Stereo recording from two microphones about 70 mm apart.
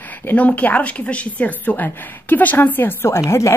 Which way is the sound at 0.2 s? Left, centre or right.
Left.